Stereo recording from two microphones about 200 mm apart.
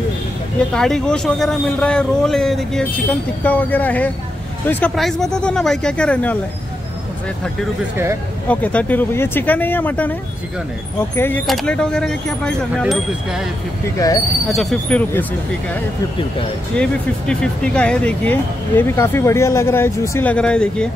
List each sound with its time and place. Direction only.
0.7 s speech: 5° left (ahead or behind)
8.5 s speech: 5° left (ahead or behind)
11.1 s speech: 10° left (ahead or behind)
13.9 s speech: 15° left (ahead or behind)
14.5 s speech: centre (ahead or behind)
16.7 s speech: 5° left (ahead or behind)